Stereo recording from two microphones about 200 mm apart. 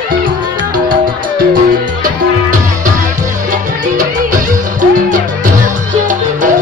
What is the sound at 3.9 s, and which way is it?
Music, 40° right (ahead or behind).